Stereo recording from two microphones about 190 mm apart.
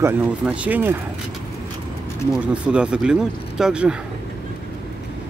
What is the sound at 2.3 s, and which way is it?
Speech, 5° right (ahead or behind).